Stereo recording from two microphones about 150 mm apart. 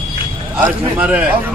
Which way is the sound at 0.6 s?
10° right (ahead or behind).